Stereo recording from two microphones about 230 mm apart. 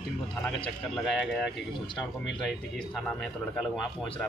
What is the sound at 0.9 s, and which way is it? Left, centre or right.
Speech, centre.